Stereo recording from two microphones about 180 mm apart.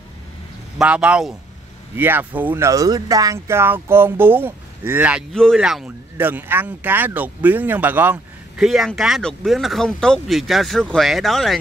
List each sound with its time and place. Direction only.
0.7 s speech: 5° right (ahead or behind)
5.3 s speech: 5° left (ahead or behind)